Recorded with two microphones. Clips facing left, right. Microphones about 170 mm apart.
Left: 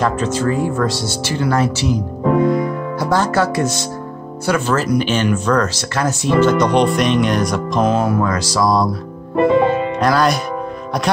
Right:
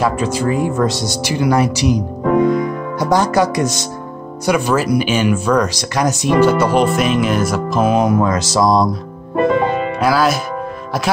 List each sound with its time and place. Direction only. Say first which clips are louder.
0.0 s speech: right 1 dB; 10° right (ahead or behind)
7.9 s speech: right 3 dB; 20° right (ahead or behind)
9.9 s speech: right 3 dB; 5° right (ahead or behind)